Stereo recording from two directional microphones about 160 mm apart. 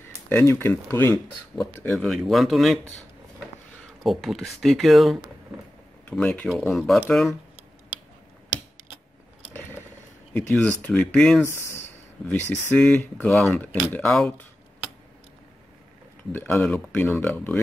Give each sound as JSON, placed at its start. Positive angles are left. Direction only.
{"t": 0.0, "sound": "speech", "side_deg": 15}
{"t": 1.9, "sound": "speech", "side_deg": 0}
{"t": 4.0, "sound": "speech", "side_deg": 0}
{"t": 9.5, "sound": "a sound", "side_deg": 15}
{"t": 10.3, "sound": "speech", "side_deg": 10}
{"t": 11.4, "sound": "speech", "side_deg": 15}
{"t": 16.5, "sound": "speech", "side_deg": 5}